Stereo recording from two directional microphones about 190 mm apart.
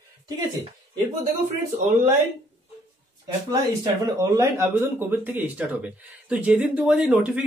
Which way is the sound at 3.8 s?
15° right (ahead or behind).